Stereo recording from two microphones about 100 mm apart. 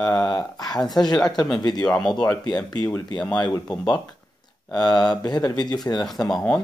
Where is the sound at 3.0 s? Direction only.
40° left (ahead or behind).